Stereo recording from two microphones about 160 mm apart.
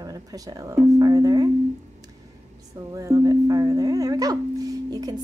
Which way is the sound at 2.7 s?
20° right (ahead or behind).